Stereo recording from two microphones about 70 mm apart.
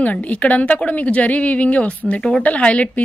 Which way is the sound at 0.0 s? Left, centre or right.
Centre.